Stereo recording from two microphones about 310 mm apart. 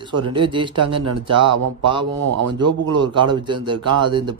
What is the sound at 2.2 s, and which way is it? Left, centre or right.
Speech, right.